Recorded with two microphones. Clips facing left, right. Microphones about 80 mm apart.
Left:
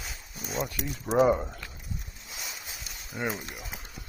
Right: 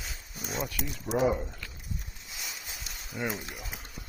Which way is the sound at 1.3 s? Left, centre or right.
Left.